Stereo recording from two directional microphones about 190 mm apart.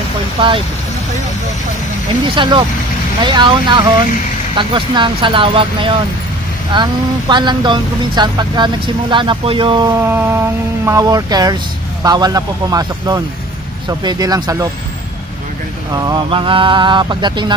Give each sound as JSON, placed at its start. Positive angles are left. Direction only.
{"t": 0.4, "sound": "speech", "side_deg": -25}
{"t": 2.3, "sound": "speech", "side_deg": -25}
{"t": 10.0, "sound": "a sound", "side_deg": -10}
{"t": 10.9, "sound": "speech", "side_deg": -20}
{"t": 15.9, "sound": "speech", "side_deg": -20}